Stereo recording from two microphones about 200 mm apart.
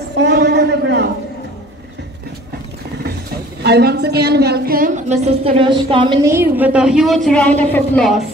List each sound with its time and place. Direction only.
0.1 s a sound: 55° right (ahead or behind)
3.6 s a woman's voice: 55° right (ahead or behind); by 6.2 s 25° right (ahead or behind)
6.2 s a woman's voice: 10° right (ahead or behind); by 8.1 s 5° left (ahead or behind)